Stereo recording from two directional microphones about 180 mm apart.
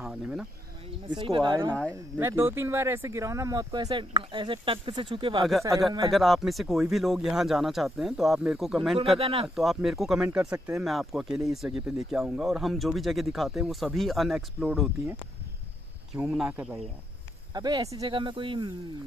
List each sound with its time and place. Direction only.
0.0 s a sound: 5° right (ahead or behind)
1.0 s speech: 30° right (ahead or behind)
1.7 s speech: 5° left (ahead or behind)
2.1 s speech: 10° right (ahead or behind); by 5.4 s 30° right (ahead or behind)
6.0 s speech: centre (ahead or behind)
9.2 s speech: 35° right (ahead or behind)
9.6 s speech: centre (ahead or behind)
17.6 s speech: 20° right (ahead or behind)